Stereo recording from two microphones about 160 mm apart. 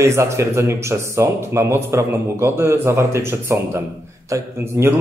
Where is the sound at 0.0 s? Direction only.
15° right (ahead or behind).